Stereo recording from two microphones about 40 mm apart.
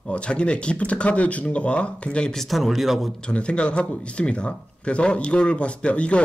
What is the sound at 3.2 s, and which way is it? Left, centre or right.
Speech, left.